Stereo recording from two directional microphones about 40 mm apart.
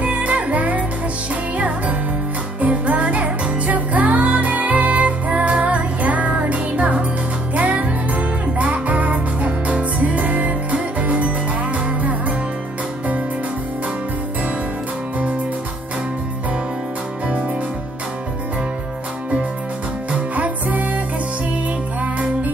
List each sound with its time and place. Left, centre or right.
0.0 s music: right
20.1 s music: right